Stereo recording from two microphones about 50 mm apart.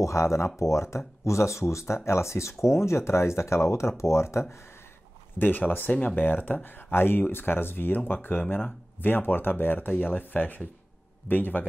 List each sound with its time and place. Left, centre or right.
0.0 s speech: left
5.4 s speech: left
6.9 s speech: left